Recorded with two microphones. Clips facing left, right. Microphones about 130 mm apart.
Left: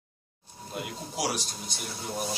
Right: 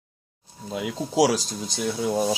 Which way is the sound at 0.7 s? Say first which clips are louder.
Right 13 dB; 90° right.